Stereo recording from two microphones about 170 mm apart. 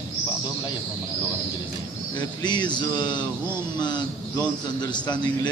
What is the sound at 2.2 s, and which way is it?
A man's voice, 25° left (ahead or behind).